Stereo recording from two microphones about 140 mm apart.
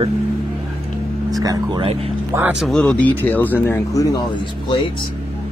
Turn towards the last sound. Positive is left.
turn(degrees=35)  # may be behind; listen again after turning